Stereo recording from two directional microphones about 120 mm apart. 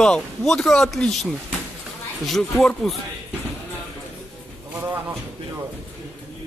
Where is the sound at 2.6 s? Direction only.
5° left (ahead or behind).